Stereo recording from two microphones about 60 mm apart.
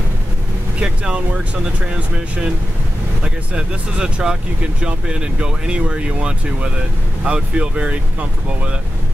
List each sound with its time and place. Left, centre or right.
0.7 s speech: centre
3.5 s speech: centre